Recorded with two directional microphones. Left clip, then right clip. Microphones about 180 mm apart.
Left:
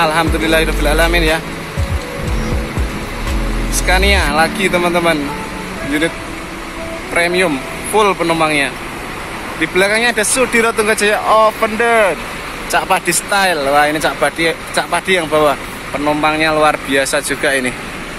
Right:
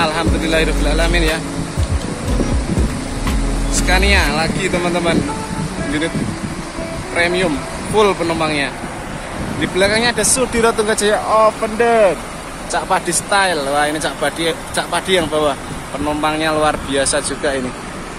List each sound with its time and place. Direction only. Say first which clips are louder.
0.0 s speech: left 4 dB; 5° left (ahead or behind)
3.8 s speech: left 2 dB; 10° left (ahead or behind)
7.2 s speech: left 2 dB; 5° left (ahead or behind)